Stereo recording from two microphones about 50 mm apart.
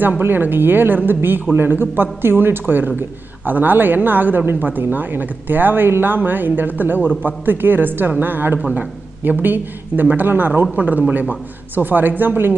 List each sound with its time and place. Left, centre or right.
0.2 s a woman's voice: right